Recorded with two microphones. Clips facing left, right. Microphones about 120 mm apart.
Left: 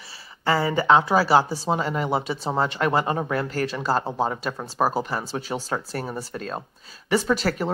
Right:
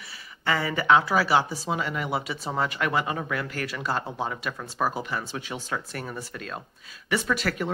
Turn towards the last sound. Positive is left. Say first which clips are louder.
# left 4 dB
turn(degrees=30)  # may be behind; listen again after turning